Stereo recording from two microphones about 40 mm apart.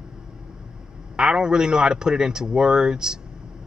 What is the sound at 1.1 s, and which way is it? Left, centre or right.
Speech, centre.